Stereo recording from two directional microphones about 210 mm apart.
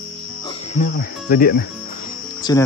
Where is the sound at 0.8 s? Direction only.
45° left (ahead or behind).